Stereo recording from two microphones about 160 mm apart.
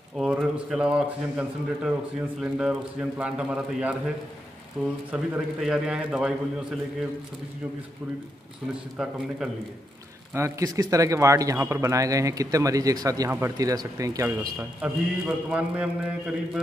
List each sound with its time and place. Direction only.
0.2 s a man's voice: 5° right (ahead or behind)
8.9 s a man's voice: 5° right (ahead or behind)
10.3 s speech: 20° right (ahead or behind)